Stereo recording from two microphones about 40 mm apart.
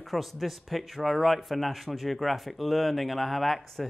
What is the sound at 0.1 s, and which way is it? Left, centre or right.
A man's voice, centre.